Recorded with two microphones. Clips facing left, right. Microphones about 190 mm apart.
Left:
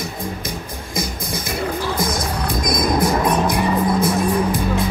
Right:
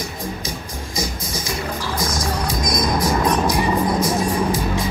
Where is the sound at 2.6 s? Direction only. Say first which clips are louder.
Left 3 dB; 55° left (ahead or behind).